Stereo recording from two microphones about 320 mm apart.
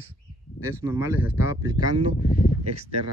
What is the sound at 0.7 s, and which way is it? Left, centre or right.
Speech, centre.